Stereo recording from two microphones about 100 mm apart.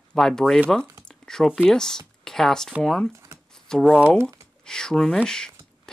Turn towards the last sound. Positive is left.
turn(degrees=5)  # may be behind; listen again after turning